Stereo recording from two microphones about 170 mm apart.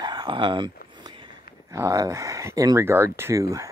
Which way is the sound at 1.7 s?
20° right (ahead or behind).